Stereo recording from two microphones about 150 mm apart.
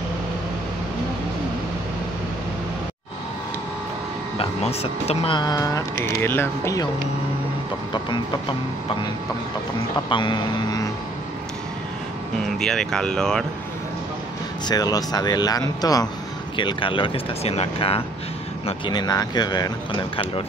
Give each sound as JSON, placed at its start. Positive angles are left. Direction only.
{"t": 4.4, "sound": "speech", "side_deg": 45}
{"t": 5.4, "sound": "speech", "side_deg": 25}
{"t": 10.0, "sound": "speech", "side_deg": 30}
{"t": 12.4, "sound": "speech", "side_deg": 5}
{"t": 14.7, "sound": "speech", "side_deg": 25}
{"t": 18.7, "sound": "speech", "side_deg": 30}